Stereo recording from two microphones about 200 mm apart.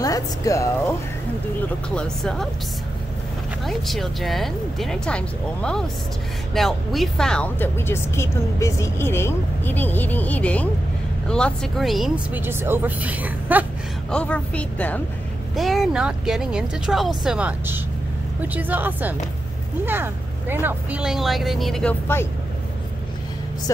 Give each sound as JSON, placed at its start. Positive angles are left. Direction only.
{"t": 0.0, "sound": "a woman's voice", "side_deg": 15}
{"t": 2.0, "sound": "speech", "side_deg": 5}
{"t": 3.6, "sound": "a woman's voice", "side_deg": 0}
{"t": 14.1, "sound": "a woman's voice", "side_deg": 5}